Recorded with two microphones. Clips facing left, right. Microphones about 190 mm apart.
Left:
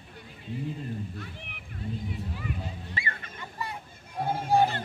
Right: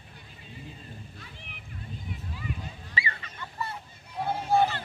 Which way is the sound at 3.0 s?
50° left (ahead or behind).